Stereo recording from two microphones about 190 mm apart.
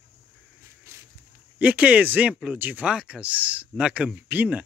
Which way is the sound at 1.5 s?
5° right (ahead or behind).